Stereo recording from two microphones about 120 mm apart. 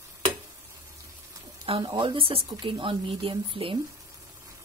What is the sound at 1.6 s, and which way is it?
A woman's voice, 40° right (ahead or behind).